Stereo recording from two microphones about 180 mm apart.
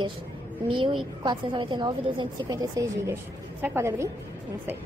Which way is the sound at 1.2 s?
25° right (ahead or behind).